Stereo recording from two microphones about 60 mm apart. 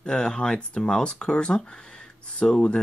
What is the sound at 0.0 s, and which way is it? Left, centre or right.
Speech, centre.